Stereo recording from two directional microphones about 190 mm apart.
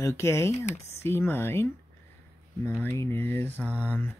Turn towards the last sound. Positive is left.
turn(degrees=10)  # may be behind; listen again after turning